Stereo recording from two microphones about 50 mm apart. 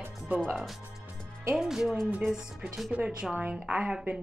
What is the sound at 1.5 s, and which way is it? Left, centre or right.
Speech, centre.